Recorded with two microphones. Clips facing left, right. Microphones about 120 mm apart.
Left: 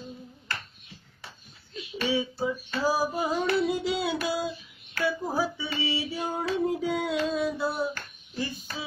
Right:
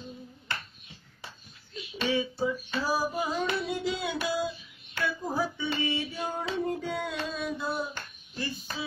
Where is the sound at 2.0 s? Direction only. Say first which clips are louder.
Even; 10° left (ahead or behind).